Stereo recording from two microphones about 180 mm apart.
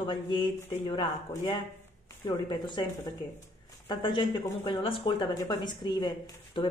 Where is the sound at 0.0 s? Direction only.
25° left (ahead or behind).